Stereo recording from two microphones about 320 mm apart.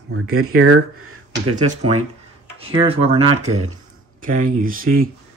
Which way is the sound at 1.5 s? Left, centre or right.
Right.